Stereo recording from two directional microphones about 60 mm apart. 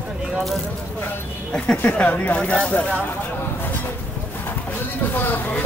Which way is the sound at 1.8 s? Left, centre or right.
Left.